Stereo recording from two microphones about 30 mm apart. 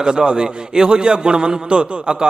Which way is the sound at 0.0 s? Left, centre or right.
Right.